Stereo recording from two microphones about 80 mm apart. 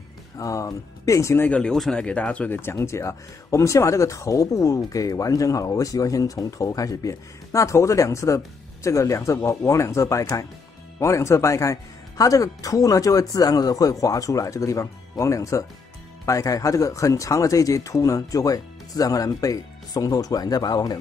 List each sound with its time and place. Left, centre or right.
0.4 s speech: left
1.4 s speech: centre
2.6 s speech: left